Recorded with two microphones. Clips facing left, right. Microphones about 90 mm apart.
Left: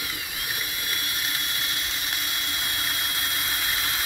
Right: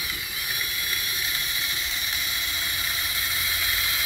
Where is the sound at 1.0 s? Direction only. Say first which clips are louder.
Left 1 dB; 50° left (ahead or behind).